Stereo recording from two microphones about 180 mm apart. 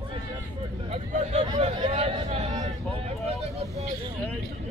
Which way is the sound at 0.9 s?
35° right (ahead or behind).